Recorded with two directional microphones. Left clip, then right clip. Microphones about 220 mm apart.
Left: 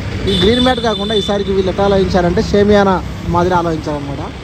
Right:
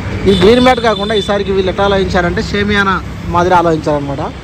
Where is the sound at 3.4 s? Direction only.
15° left (ahead or behind).